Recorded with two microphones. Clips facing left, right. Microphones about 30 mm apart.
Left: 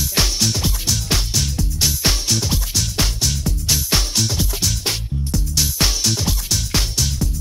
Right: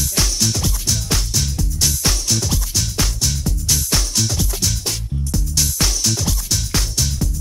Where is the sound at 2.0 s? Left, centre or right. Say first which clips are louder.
Left 2 dB; left.